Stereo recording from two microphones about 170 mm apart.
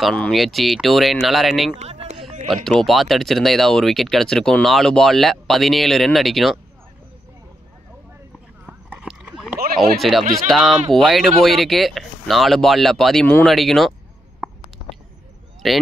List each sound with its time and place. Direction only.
0.0 s speech: 5° left (ahead or behind)
1.8 s a sound: 40° right (ahead or behind)
2.5 s speech: centre (ahead or behind)
8.6 s clip-clop: 5° right (ahead or behind)
9.8 s speech: centre (ahead or behind)
15.6 s speech: centre (ahead or behind)